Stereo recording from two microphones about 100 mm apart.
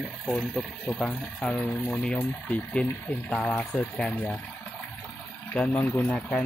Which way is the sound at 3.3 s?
5° left (ahead or behind).